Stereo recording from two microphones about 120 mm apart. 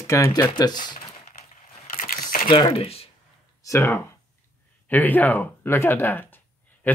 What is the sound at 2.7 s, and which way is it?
Speech, 55° left (ahead or behind).